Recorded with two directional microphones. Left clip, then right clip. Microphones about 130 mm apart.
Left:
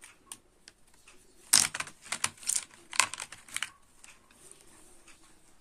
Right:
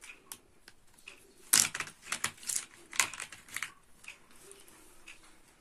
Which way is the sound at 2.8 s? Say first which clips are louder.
Left 4 dB; 60° left (ahead or behind).